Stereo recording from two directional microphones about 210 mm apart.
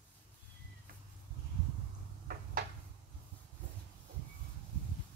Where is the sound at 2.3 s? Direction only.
45° right (ahead or behind).